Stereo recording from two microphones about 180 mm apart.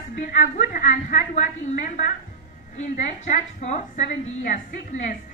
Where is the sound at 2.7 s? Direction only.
40° left (ahead or behind).